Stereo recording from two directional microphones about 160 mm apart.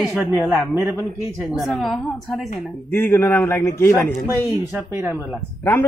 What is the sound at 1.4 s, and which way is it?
Speech, centre (ahead or behind).